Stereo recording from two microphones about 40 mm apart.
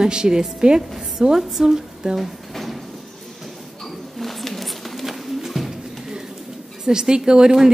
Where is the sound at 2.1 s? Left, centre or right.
Centre.